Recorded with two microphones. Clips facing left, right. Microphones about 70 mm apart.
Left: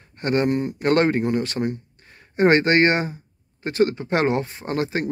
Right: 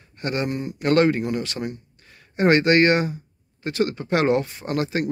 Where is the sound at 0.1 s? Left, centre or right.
Left.